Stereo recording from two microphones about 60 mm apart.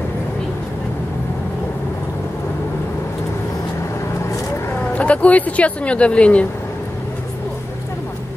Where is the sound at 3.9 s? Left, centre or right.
Left.